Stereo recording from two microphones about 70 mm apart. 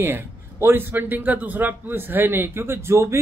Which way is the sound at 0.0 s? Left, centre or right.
Right.